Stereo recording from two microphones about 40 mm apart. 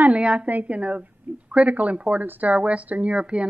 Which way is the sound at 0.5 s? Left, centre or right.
Right.